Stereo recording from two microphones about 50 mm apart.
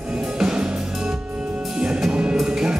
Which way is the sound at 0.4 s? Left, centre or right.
Centre.